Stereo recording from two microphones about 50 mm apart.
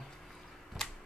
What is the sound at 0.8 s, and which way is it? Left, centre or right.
Typewriter, centre.